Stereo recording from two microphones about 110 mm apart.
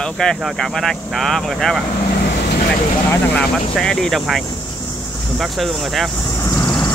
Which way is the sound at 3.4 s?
5° left (ahead or behind).